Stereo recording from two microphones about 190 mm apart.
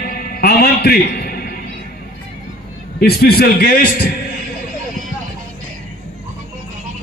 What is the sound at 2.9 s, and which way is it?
Speech, 55° left (ahead or behind).